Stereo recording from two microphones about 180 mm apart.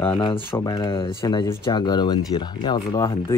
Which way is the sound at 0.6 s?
25° left (ahead or behind).